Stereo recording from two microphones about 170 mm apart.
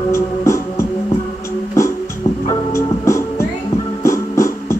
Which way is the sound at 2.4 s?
20° left (ahead or behind).